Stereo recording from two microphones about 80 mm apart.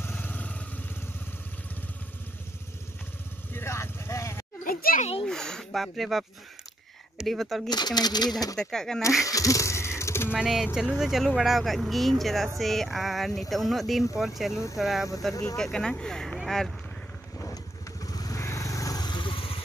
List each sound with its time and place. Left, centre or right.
0.0 s vehicle: left
3.5 s vehicle: left
5.2 s speech: centre
7.7 s speech: left
8.6 s speech: centre
9.2 s a sound: left
10.3 s speech: centre
18.0 s motorcycle: left
18.4 s vehicle: left
19.0 s vehicle: left